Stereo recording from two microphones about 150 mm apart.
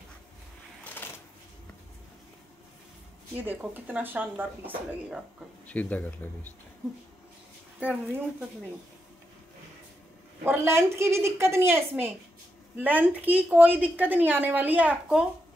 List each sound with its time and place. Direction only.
3.3 s a woman's voice: 10° right (ahead or behind)
5.7 s speech: 10° left (ahead or behind)
7.8 s a woman's voice: 10° right (ahead or behind)
10.4 s a woman's voice: 15° right (ahead or behind)